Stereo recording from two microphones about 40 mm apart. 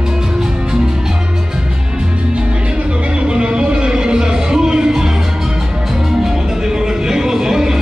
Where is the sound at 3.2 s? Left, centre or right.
Right.